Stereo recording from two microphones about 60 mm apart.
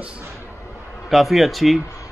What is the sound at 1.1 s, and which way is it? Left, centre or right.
Speech, centre.